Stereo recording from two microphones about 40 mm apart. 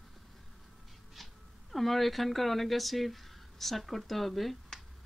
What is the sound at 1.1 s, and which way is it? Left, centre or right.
Speech, centre.